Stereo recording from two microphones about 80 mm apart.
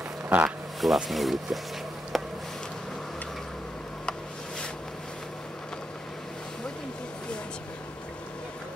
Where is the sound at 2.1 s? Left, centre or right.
Centre.